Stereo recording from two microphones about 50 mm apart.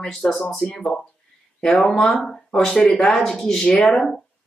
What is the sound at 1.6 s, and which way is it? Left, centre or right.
Speech, centre.